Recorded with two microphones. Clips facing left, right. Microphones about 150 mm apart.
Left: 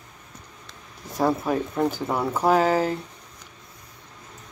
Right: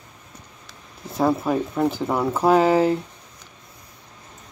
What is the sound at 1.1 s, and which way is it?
Speech, 5° right (ahead or behind).